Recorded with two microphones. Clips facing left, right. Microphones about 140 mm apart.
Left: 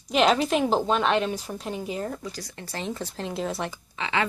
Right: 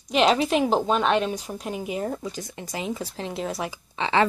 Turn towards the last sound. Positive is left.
turn(degrees=-30)  # may be behind; listen again after turning